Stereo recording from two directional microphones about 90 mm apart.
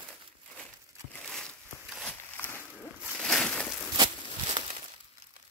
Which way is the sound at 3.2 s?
10° left (ahead or behind).